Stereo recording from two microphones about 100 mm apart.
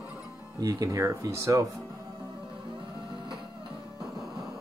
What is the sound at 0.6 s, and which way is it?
Speech, 35° right (ahead or behind).